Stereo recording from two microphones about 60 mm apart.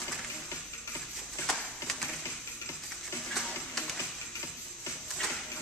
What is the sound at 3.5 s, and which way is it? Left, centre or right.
Music, centre.